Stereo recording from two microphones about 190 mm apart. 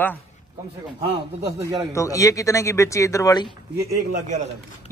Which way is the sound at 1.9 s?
15° left (ahead or behind).